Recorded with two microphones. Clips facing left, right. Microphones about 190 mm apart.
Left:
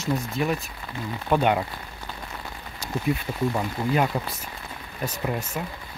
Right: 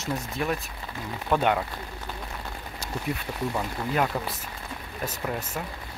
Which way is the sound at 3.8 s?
20° left (ahead or behind).